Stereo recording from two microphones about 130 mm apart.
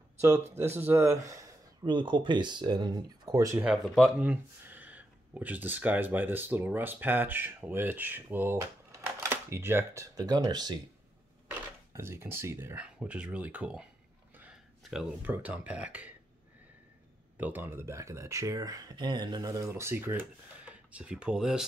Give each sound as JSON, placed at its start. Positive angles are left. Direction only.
{"t": 0.7, "sound": "speech", "side_deg": -20}
{"t": 3.6, "sound": "speech", "side_deg": 0}
{"t": 4.2, "sound": "speech", "side_deg": -15}
{"t": 10.1, "sound": "speech", "side_deg": -30}
{"t": 11.9, "sound": "speech", "side_deg": -20}
{"t": 14.3, "sound": "a sound", "side_deg": -10}
{"t": 14.8, "sound": "speech", "side_deg": -5}
{"t": 17.4, "sound": "speech", "side_deg": -15}